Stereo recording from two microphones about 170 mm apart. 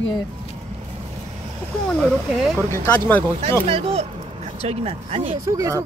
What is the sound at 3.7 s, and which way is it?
Speech, 35° right (ahead or behind).